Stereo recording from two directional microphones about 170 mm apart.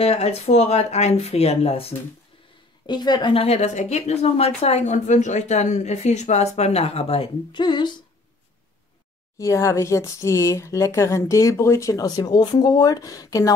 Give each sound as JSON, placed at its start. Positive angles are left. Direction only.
{"t": 0.0, "sound": "a woman's voice", "side_deg": 35}
{"t": 2.9, "sound": "a woman's voice", "side_deg": 25}
{"t": 9.4, "sound": "speech", "side_deg": 20}